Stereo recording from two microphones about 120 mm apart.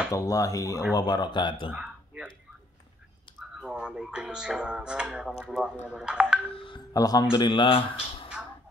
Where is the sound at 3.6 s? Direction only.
5° right (ahead or behind).